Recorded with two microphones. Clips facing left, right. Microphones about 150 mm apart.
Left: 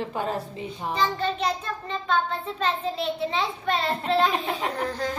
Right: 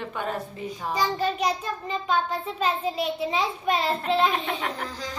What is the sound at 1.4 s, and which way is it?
A child's voice, 10° right (ahead or behind).